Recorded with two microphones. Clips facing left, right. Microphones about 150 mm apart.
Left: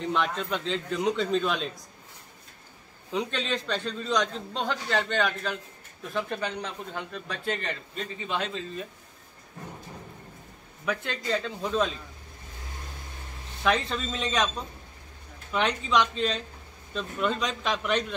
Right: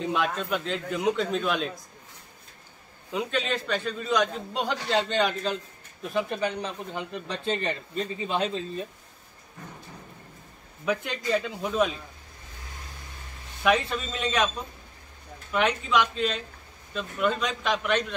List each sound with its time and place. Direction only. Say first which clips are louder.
0.0 s a man's voice: right 1 dB; 10° right (ahead or behind)
3.1 s a man's voice: right 1 dB; 5° right (ahead or behind)
8.3 s speech: right 2 dB; 35° right (ahead or behind)
10.9 s a man's voice: right 3 dB; 15° right (ahead or behind)
13.7 s a man's voice: right 2 dB; 5° right (ahead or behind)
15.5 s a man's voice: right 1 dB; 5° right (ahead or behind)